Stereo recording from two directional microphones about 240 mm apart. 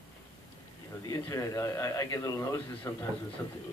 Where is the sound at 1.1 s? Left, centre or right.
Centre.